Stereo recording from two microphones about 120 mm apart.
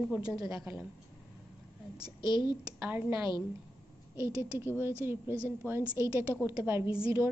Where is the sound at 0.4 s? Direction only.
30° right (ahead or behind).